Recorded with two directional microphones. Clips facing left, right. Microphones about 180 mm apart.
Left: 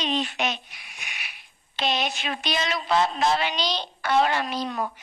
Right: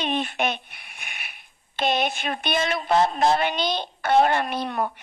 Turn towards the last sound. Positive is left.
turn(degrees=-60)  # may be behind; listen again after turning